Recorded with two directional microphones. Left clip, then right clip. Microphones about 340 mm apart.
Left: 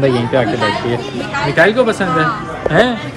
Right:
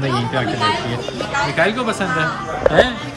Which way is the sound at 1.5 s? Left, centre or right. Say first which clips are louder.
Left 11 dB; centre.